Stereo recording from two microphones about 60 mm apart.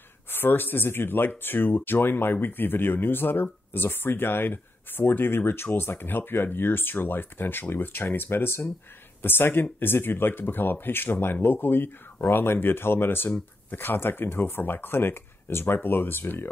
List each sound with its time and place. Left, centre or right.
0.3 s speech: left